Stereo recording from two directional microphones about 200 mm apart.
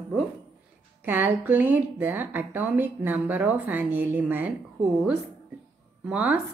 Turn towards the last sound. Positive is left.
turn(degrees=-5)  # may be behind; listen again after turning